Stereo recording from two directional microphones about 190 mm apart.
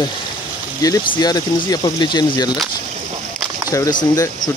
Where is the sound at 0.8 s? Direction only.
20° left (ahead or behind).